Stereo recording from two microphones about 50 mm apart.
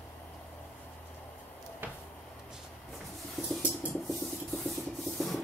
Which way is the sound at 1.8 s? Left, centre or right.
Right.